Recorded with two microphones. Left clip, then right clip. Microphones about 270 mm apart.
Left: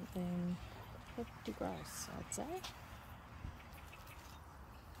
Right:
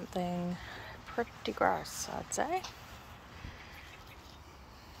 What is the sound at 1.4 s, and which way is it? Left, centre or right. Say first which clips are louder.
Speech: right 15 dB; centre.